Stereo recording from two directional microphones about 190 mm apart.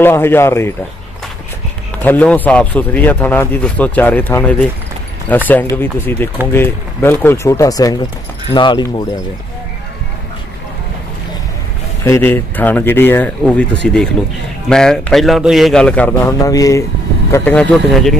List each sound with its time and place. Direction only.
0.0 s speech: 10° left (ahead or behind)
2.0 s speech: 10° left (ahead or behind)
12.0 s a man's voice: 15° left (ahead or behind)
17.3 s a man's voice: 5° left (ahead or behind)